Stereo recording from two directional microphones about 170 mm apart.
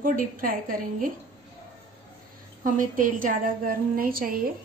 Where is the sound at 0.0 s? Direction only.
55° right (ahead or behind).